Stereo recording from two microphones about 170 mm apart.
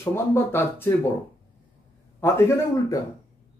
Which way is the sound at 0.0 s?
15° left (ahead or behind).